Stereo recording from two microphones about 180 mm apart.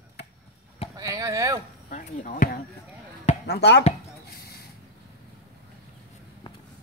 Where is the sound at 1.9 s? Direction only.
45° left (ahead or behind).